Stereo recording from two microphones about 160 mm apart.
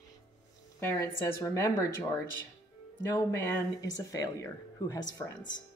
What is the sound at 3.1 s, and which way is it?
A woman's voice, 15° left (ahead or behind).